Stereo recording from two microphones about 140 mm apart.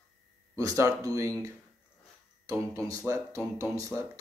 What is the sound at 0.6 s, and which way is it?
Speech, 25° right (ahead or behind).